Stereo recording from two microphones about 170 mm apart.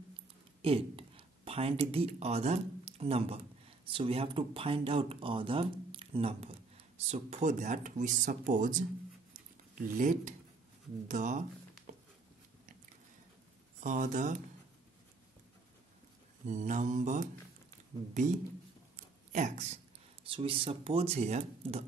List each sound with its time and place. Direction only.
0.6 s speech: 35° right (ahead or behind)
11.9 s a sound: 50° right (ahead or behind)
13.8 s speech: 45° right (ahead or behind)
16.4 s speech: 45° right (ahead or behind)